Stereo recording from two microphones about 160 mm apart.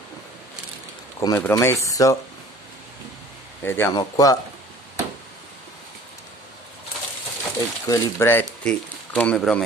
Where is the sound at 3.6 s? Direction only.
15° left (ahead or behind).